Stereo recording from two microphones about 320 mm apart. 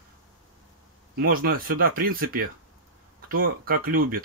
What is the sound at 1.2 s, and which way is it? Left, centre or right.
Speech, right.